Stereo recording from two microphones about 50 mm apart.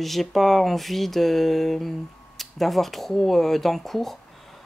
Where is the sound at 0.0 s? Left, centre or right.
Centre.